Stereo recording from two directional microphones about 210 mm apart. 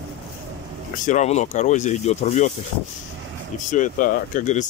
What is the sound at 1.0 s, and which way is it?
Speech, 35° left (ahead or behind).